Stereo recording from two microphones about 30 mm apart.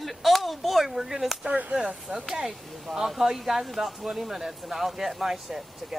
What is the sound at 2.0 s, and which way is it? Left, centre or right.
Speech, centre.